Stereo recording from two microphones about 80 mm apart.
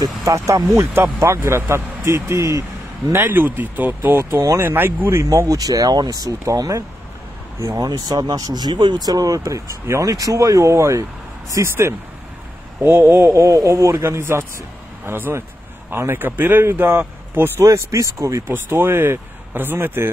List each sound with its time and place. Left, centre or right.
0.0 s a man's voice: right
3.1 s speech: right
4.2 s a man's voice: right
5.5 s a man's voice: right
17.6 s a man's voice: right
18.5 s speech: right